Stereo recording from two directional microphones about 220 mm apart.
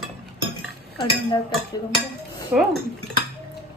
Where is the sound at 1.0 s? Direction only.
20° left (ahead or behind).